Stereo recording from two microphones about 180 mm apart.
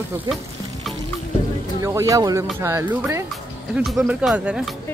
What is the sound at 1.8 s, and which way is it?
Speech, 15° right (ahead or behind).